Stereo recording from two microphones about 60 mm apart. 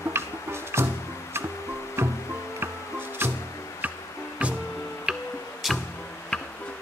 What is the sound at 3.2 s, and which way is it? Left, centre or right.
Music, right.